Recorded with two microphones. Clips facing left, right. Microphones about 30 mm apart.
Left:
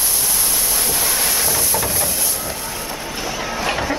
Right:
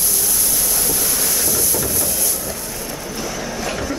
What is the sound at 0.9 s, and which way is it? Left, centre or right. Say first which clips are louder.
Vehicle: left 2 dB; left.